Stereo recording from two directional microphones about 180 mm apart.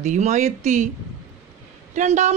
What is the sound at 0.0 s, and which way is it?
Speech, 40° right (ahead or behind).